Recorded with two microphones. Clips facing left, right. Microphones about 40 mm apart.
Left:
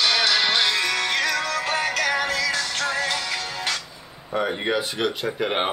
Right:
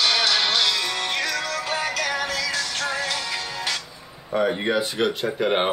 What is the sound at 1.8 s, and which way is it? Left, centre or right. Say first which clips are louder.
Music: left 2 dB; centre.